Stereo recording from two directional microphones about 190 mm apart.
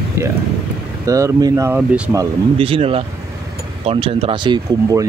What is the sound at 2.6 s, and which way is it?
Speech, 30° right (ahead or behind).